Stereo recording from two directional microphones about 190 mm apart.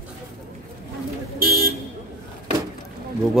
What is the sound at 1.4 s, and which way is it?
Vehicle, 50° right (ahead or behind).